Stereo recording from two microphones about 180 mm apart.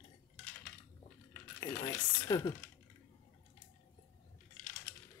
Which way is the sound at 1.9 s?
20° left (ahead or behind).